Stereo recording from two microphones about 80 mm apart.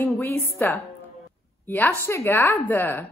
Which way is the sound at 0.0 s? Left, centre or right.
Left.